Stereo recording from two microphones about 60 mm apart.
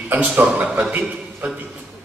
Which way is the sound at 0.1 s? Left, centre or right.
Right.